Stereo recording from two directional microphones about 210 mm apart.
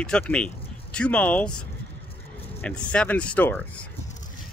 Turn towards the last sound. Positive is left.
turn(degrees=10)  # may be behind; listen again after turning